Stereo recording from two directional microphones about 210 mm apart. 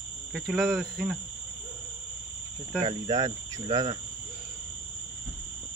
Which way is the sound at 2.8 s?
20° right (ahead or behind).